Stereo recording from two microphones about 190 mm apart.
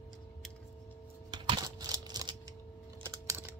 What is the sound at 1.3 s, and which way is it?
Computer keyboard, 20° right (ahead or behind).